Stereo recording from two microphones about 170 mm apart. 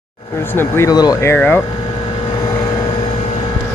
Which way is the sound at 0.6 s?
20° left (ahead or behind).